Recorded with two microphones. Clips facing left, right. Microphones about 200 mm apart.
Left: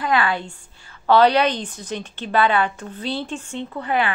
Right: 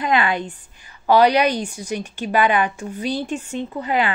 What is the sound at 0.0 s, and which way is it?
A woman's voice, 20° right (ahead or behind).